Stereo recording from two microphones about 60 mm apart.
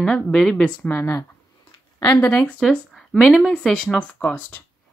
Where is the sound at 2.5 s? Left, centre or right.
Centre.